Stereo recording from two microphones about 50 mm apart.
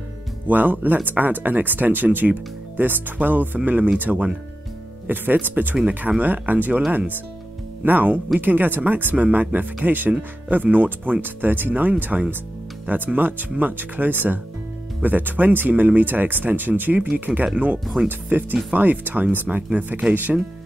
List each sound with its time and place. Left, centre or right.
0.5 s speech: right
7.8 s speech: right